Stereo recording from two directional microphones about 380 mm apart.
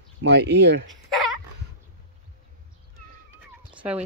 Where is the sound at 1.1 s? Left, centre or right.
Centre.